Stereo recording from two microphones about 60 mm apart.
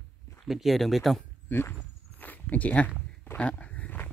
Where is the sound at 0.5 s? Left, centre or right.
Centre.